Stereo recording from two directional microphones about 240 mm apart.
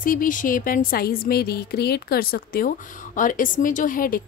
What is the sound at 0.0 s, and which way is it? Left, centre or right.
A woman's voice, left.